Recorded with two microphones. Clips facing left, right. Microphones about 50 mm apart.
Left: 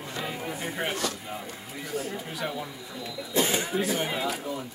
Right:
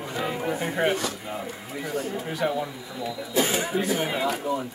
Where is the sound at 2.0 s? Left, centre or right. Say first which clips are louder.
Right 5 dB; centre.